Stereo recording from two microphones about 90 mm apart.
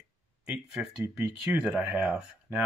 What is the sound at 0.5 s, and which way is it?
Speech, 5° right (ahead or behind).